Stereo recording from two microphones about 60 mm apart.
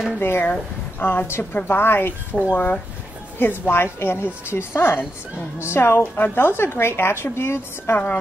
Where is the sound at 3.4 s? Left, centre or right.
Left.